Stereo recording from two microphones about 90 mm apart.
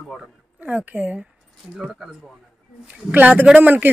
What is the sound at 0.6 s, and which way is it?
Speech, 20° right (ahead or behind).